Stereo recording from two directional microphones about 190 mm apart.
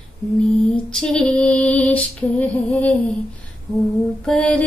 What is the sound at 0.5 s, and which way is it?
Female singing, 5° left (ahead or behind).